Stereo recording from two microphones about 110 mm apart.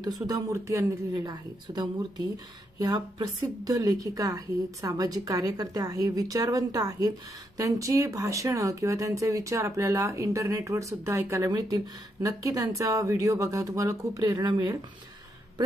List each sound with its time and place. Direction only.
0.0 s speech: 35° right (ahead or behind)